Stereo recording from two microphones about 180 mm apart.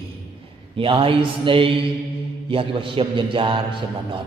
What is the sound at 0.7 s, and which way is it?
A man's voice, 30° right (ahead or behind).